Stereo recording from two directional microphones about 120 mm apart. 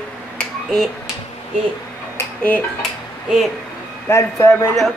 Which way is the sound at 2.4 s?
15° left (ahead or behind).